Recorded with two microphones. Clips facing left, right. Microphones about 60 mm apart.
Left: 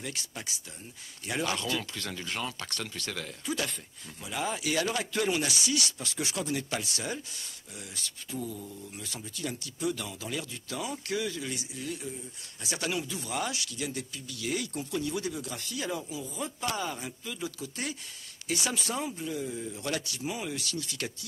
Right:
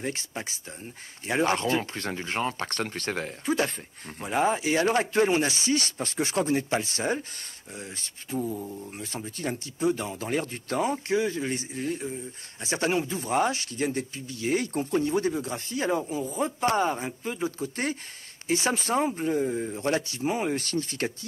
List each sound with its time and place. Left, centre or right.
0.0 s speech: right